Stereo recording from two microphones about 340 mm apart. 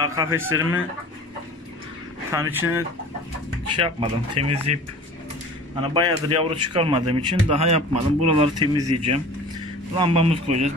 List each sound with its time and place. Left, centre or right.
0.0 s a man's voice: centre
2.3 s a man's voice: centre
3.8 s a man's voice: centre
5.8 s a man's voice: centre
8.8 s speech: right
9.9 s a man's voice: centre